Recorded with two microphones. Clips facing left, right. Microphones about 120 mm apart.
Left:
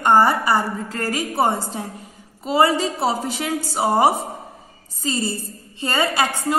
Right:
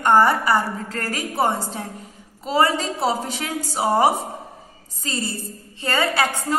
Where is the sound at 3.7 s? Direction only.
15° left (ahead or behind).